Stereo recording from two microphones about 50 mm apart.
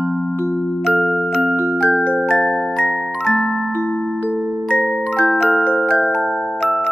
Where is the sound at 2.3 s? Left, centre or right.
Centre.